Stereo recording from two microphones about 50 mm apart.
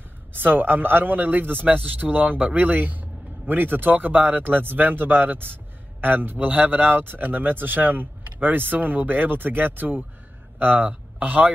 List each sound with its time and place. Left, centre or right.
0.3 s a man's voice: right